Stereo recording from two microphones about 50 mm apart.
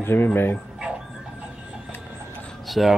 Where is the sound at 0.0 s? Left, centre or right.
Left.